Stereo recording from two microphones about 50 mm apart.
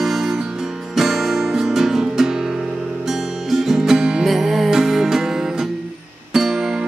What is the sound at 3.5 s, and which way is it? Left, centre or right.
Music, centre.